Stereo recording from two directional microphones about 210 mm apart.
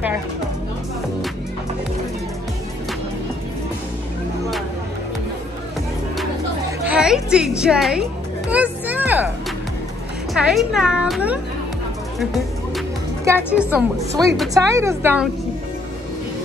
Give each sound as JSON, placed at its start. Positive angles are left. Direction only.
{"t": 6.8, "sound": "music", "side_deg": -5}
{"t": 10.3, "sound": "speech", "side_deg": 0}
{"t": 12.2, "sound": "music", "side_deg": 0}
{"t": 13.4, "sound": "a woman's voice", "side_deg": 10}
{"t": 13.9, "sound": "a woman's voice", "side_deg": -15}